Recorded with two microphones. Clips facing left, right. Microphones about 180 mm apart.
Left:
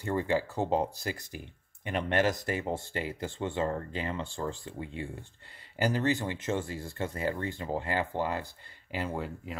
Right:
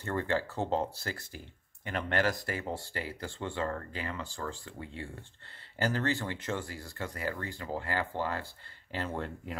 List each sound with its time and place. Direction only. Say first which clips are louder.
0.0 s speech: left 3 dB; 15° left (ahead or behind)